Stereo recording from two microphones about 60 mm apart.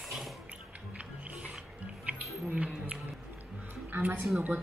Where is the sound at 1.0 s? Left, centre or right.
Right.